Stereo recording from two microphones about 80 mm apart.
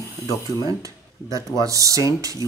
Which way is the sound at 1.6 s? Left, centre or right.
Right.